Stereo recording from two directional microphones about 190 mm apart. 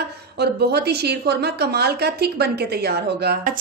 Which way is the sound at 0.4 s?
60° right (ahead or behind).